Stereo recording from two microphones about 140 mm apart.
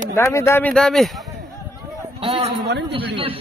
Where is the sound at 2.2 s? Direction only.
40° right (ahead or behind).